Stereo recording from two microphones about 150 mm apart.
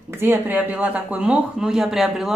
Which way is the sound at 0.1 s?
15° right (ahead or behind).